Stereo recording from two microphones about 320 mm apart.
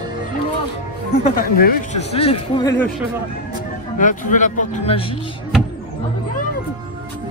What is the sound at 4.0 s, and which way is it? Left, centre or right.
A man's voice, left.